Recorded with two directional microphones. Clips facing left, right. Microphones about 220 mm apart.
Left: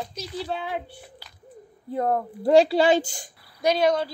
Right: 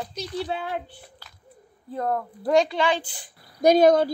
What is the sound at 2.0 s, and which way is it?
Speech, 25° left (ahead or behind).